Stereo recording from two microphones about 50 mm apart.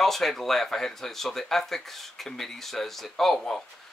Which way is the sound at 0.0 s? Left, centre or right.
Centre.